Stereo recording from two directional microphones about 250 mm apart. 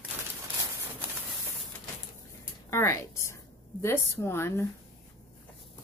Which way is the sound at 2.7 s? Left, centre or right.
Centre.